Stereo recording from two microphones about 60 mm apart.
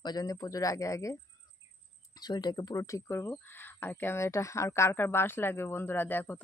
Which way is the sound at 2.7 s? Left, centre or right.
Left.